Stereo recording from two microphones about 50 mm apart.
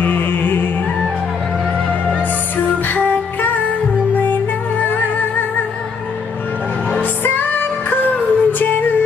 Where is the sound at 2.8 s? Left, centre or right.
Left.